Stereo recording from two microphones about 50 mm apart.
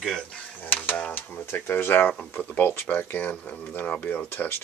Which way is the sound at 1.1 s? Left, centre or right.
Left.